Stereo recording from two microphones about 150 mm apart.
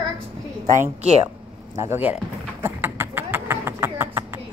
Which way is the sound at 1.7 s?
15° right (ahead or behind).